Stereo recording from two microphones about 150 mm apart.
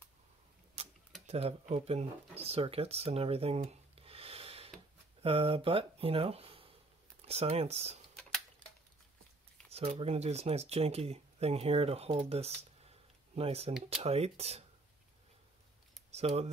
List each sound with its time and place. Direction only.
0.8 s a sound: 40° right (ahead or behind)
1.2 s speech: 45° right (ahead or behind)
8.2 s tick-tock: 5° left (ahead or behind)
9.7 s speech: 40° right (ahead or behind)
16.1 s speech: 45° right (ahead or behind)